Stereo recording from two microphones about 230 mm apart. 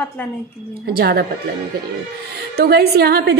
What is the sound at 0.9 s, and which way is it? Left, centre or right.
Speech, right.